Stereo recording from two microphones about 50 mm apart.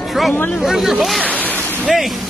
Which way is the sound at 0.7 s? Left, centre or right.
Centre.